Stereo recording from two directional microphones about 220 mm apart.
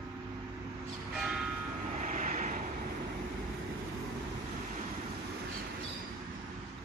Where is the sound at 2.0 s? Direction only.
35° right (ahead or behind).